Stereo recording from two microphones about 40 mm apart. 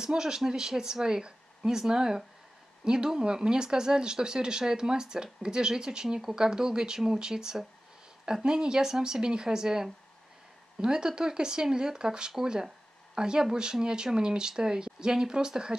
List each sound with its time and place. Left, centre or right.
0.0 s speech: centre